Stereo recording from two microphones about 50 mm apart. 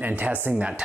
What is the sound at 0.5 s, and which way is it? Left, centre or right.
Speech, right.